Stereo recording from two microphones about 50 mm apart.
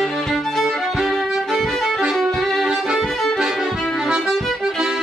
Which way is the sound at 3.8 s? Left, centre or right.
Centre.